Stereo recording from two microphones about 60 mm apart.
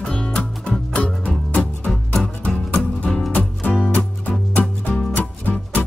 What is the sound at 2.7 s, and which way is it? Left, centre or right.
Music, left.